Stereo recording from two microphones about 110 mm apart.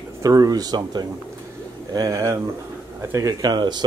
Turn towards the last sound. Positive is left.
turn(degrees=-40)  # may be behind; listen again after turning